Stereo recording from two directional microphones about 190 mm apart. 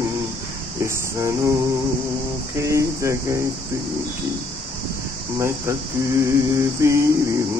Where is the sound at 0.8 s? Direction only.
15° right (ahead or behind).